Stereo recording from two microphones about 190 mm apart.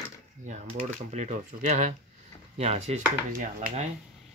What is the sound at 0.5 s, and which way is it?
Speech, 40° right (ahead or behind).